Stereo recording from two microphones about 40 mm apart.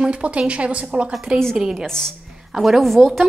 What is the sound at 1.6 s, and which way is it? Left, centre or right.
Speech, centre.